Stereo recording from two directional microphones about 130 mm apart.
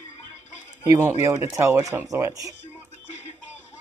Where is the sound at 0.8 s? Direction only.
20° right (ahead or behind).